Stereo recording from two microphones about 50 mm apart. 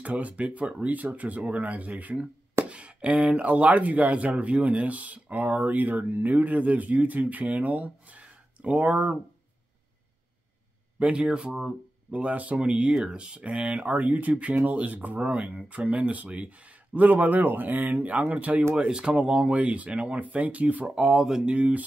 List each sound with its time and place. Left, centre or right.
0.0 s speech: right
11.0 s speech: right
12.1 s speech: right
18.8 s speech: centre
20.9 s speech: centre
21.5 s speech: right